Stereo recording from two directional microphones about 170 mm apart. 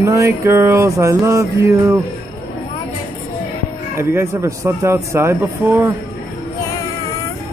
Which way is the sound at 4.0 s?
15° right (ahead or behind).